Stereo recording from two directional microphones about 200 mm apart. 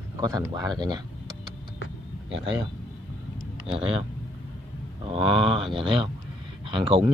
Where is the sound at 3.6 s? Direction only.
30° right (ahead or behind).